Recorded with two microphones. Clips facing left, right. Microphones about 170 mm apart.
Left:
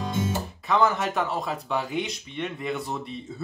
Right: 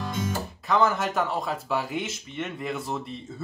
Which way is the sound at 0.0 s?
25° left (ahead or behind).